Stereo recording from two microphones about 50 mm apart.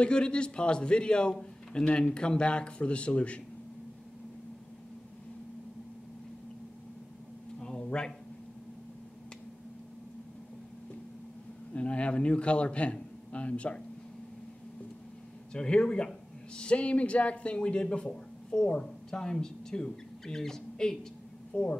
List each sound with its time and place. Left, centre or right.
0.0 s a man's voice: centre
7.6 s a sound: centre
11.7 s a man's voice: left
15.5 s a man's voice: centre